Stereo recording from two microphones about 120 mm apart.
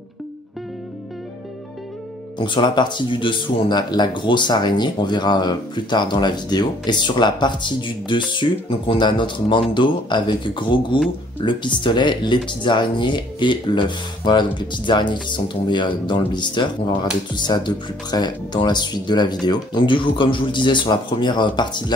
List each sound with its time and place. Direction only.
2.3 s speech: 40° left (ahead or behind)